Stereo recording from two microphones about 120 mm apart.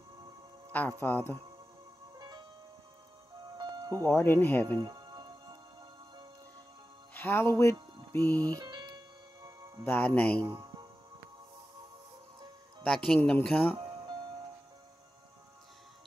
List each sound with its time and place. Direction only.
0.7 s music: 15° left (ahead or behind)
2.1 s music: 35° right (ahead or behind)
3.5 s music: 35° right (ahead or behind)
4.1 s speech: 15° left (ahead or behind)
4.6 s music: 35° right (ahead or behind)
7.2 s speech: 20° left (ahead or behind)
8.2 s speech: 30° right (ahead or behind)
9.8 s speech: 15° left (ahead or behind)
10.4 s music: 35° right (ahead or behind)
12.8 s speech: 5° left (ahead or behind)
13.7 s music: 35° right (ahead or behind)